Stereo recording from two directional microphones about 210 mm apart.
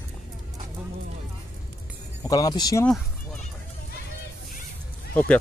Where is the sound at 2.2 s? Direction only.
20° left (ahead or behind).